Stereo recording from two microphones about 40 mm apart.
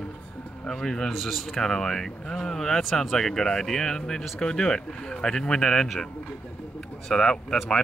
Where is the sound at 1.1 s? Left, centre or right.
Centre.